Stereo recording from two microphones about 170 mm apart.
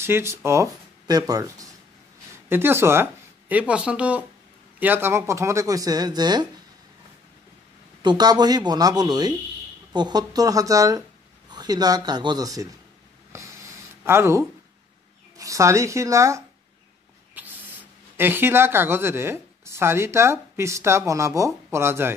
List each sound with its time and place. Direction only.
0.0 s speech: 15° right (ahead or behind)
8.0 s speech: 25° right (ahead or behind)
13.3 s writing: 15° right (ahead or behind)
14.0 s speech: 15° right (ahead or behind)